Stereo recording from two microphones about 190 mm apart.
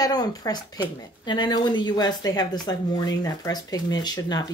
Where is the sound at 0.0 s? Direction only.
20° left (ahead or behind).